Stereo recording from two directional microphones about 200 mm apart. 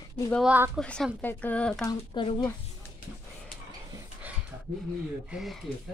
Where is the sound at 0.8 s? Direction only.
5° left (ahead or behind).